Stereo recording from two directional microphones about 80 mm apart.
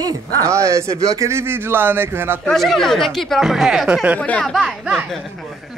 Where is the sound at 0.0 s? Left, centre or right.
Right.